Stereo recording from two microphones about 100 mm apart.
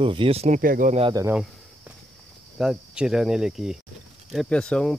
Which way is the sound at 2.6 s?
5° right (ahead or behind).